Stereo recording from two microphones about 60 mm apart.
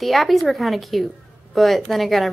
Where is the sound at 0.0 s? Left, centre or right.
Centre.